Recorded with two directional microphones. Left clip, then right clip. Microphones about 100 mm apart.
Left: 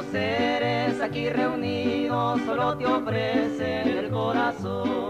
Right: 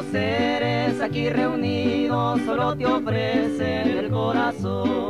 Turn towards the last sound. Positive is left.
turn(degrees=25)  # may be behind; listen again after turning